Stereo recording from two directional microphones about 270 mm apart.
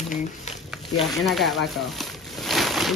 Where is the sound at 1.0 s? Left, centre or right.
Centre.